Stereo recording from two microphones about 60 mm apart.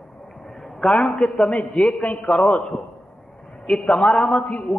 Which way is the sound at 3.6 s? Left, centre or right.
Centre.